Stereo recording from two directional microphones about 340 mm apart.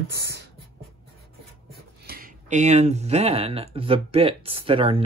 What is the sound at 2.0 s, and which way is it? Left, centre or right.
Speech, right.